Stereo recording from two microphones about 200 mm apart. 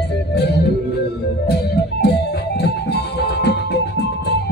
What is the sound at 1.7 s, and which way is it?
Music, 55° left (ahead or behind).